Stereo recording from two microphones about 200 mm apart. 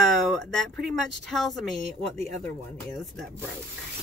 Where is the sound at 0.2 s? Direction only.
Centre (ahead or behind).